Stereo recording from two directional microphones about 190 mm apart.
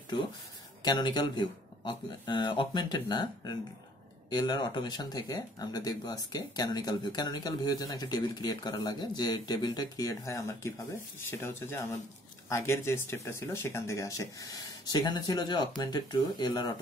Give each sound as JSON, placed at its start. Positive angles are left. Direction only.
{"t": 0.8, "sound": "speech", "side_deg": 25}